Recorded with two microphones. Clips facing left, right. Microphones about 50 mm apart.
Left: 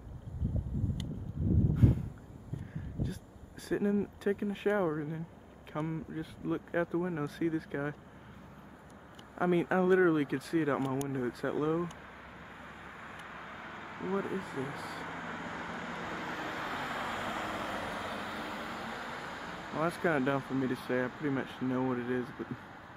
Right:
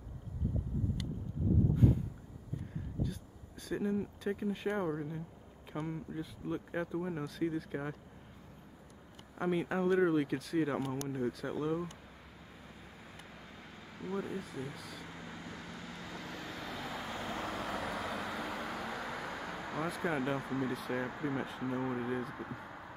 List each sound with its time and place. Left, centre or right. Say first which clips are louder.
3.7 s speech: left 4 dB; centre
9.4 s speech: left 4 dB; centre
11.1 s speech: left 3 dB; centre
11.7 s speech: left 3 dB; left
12.6 s vehicle: left 7 dB; left
14.8 s speech: left 7 dB; centre
15.0 s vehicle: left 6 dB; left; by 20.4 s centre
20.4 s speech: left 3 dB; centre